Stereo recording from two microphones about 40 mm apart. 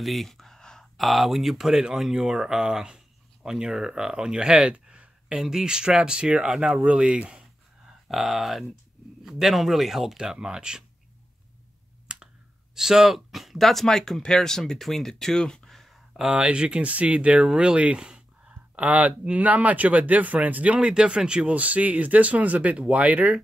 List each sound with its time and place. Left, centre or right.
0.0 s a sound: centre
0.9 s speech: centre; by 5.0 s right
5.3 s speech: centre
6.5 s speech: centre
6.8 s speech: right
8.1 s speech: centre
12.1 s clicking: right
12.7 s speech: centre
15.6 s a sound: centre
16.3 s speech: right
18.8 s speech: right
20.8 s speech: right
21.5 s speech: right